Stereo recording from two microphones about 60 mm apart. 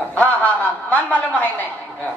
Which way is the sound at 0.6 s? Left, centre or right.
Left.